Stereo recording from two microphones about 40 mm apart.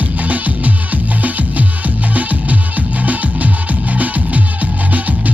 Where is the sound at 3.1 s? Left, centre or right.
Right.